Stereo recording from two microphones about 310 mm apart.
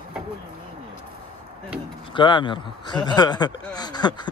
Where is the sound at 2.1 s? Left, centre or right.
Centre.